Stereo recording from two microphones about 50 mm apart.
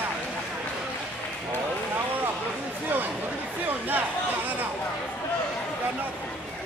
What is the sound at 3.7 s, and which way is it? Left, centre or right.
Chatter, right.